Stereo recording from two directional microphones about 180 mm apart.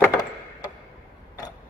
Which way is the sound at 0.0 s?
20° left (ahead or behind).